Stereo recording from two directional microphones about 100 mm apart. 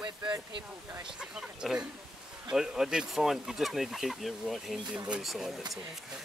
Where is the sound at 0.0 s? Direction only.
45° right (ahead or behind).